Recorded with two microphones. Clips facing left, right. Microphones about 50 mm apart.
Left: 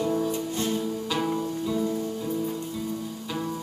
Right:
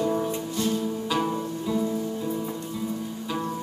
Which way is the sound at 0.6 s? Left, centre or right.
Left.